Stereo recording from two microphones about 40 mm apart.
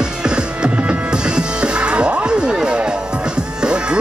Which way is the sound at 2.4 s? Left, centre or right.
Right.